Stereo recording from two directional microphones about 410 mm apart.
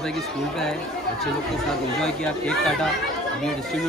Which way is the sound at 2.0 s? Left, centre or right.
Centre.